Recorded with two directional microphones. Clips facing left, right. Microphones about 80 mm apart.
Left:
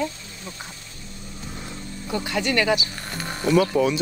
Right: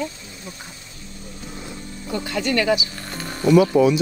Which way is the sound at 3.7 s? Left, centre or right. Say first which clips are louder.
Right 5 dB; right.